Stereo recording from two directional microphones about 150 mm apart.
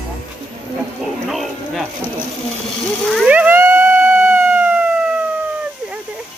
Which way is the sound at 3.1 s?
5° right (ahead or behind).